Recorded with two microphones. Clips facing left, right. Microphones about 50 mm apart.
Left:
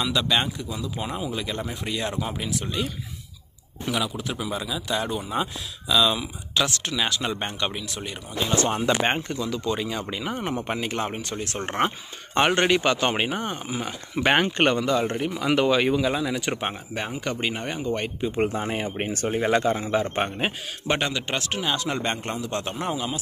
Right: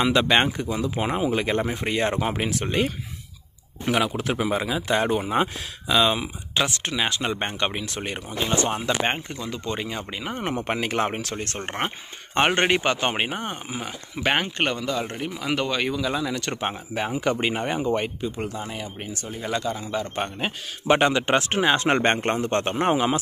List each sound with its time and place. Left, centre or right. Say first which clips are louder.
0.0 s speech: right 4 dB; right
7.8 s a man's voice: right 3 dB; right
8.6 s speech: left 1 dB; centre
9.3 s speech: left 3 dB; right
10.4 s speech: right 5 dB; right
11.3 s a man's voice: even; right
12.4 s speech: even; right
14.1 s speech: left 3 dB; centre
16.5 s speech: right 2 dB; centre
18.3 s speech: left 6 dB; left; by 20.5 s centre
21.0 s speech: right 7 dB; right
21.8 s a man's voice: right 7 dB; right